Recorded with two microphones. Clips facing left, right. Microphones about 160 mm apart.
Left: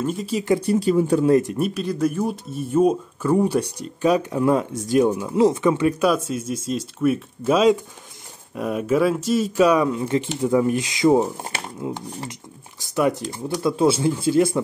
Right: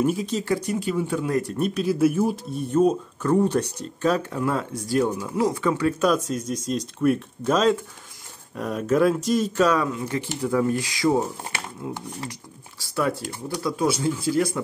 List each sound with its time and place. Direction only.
0.0 s speech: 5° right (ahead or behind)
0.3 s speech: 10° left (ahead or behind)
0.6 s speech: 35° left (ahead or behind)
1.3 s speech: 20° left (ahead or behind)
1.6 s speech: centre (ahead or behind)
9.9 s speech: 25° left (ahead or behind)